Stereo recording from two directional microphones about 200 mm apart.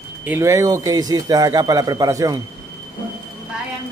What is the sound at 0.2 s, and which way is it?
A man's voice, 10° right (ahead or behind).